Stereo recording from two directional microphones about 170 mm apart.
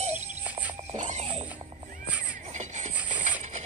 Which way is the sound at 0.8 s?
40° right (ahead or behind).